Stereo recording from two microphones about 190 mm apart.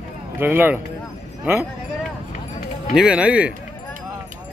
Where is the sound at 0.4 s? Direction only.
10° right (ahead or behind).